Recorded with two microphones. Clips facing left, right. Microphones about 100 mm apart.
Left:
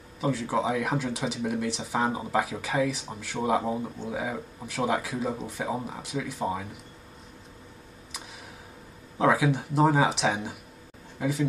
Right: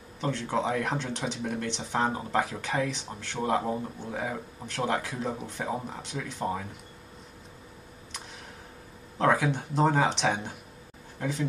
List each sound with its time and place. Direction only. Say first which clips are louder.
0.2 s speech: left 2 dB; 5° left (ahead or behind)
9.2 s speech: left 2 dB; centre (ahead or behind)